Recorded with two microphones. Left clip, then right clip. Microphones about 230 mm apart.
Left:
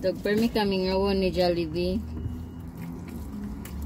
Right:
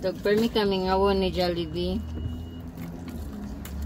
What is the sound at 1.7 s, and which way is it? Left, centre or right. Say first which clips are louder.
Speech: left 2 dB; right.